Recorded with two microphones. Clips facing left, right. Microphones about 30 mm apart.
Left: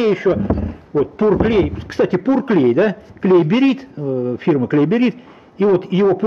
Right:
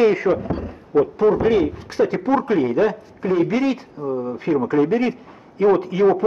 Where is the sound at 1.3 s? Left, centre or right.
Left.